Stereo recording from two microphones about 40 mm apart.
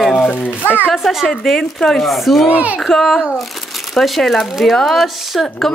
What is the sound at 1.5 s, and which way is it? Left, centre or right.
A woman's voice, centre.